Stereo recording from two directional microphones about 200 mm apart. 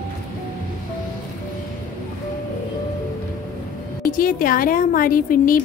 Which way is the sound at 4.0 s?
45° left (ahead or behind).